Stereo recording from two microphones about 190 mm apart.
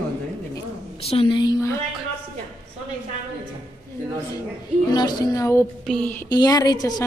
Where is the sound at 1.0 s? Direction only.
30° left (ahead or behind).